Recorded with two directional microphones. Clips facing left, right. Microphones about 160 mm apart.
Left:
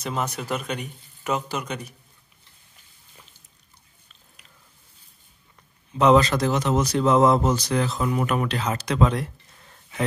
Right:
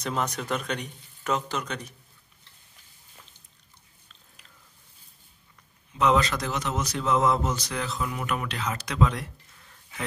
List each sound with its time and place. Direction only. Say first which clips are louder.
0.0 s speech: left 1 dB; 5° left (ahead or behind)
5.9 s speech: left 6 dB; 30° left (ahead or behind)